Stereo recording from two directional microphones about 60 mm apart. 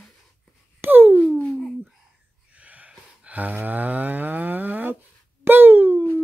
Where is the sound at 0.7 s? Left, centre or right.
Right.